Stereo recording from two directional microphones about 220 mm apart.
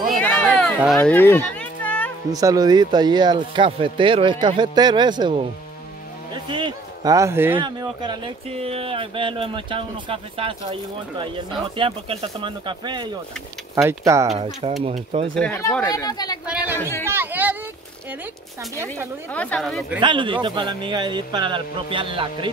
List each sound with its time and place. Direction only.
0.1 s a sound: 5° left (ahead or behind)
0.7 s music: centre (ahead or behind)
2.3 s speech: 15° right (ahead or behind)
14.3 s speech: 25° right (ahead or behind)
15.3 s speech: 5° left (ahead or behind)
16.4 s speech: 5° right (ahead or behind)
19.3 s speech: 5° left (ahead or behind)
20.0 s speech: 20° right (ahead or behind)